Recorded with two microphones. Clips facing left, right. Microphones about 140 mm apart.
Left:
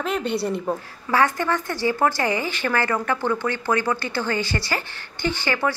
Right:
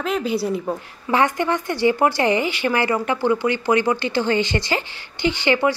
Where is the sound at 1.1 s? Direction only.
15° right (ahead or behind).